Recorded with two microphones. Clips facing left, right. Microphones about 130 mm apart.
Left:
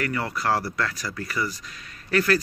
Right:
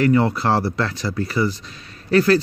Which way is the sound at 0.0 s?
25° right (ahead or behind).